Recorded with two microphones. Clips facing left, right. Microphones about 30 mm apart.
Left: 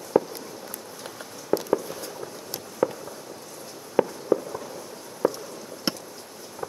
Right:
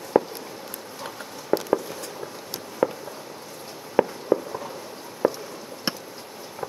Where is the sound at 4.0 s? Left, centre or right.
Centre.